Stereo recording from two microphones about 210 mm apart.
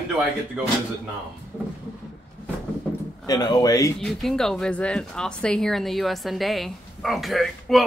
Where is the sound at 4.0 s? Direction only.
Centre (ahead or behind).